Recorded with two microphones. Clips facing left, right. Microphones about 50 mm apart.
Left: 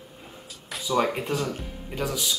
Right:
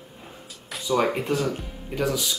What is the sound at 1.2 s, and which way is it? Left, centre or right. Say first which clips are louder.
Speech: right 3 dB; centre.